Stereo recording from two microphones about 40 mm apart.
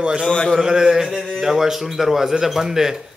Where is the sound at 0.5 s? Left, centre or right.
Centre.